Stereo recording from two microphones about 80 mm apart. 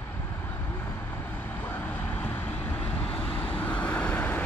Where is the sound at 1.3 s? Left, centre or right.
Left.